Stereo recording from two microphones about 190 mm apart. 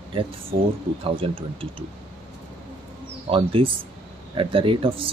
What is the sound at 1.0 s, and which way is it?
Speech, 30° right (ahead or behind).